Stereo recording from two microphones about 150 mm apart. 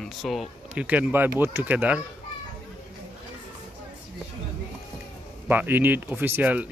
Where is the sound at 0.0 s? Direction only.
Centre (ahead or behind).